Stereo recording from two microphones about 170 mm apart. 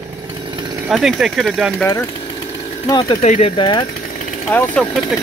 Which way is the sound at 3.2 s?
40° left (ahead or behind).